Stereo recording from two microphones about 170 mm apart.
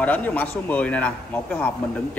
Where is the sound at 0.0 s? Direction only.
10° left (ahead or behind).